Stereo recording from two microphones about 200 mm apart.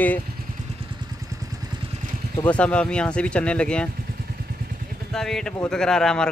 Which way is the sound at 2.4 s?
5° left (ahead or behind).